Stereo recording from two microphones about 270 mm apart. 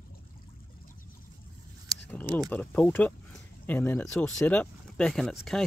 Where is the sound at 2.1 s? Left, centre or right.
Centre.